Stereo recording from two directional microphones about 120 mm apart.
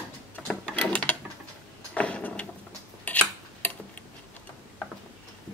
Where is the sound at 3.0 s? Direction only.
10° left (ahead or behind).